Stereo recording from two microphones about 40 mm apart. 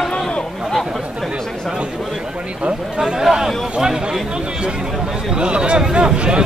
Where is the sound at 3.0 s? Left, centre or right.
Centre.